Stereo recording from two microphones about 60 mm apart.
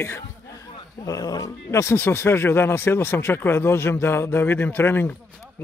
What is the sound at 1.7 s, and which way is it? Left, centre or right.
Speech, left.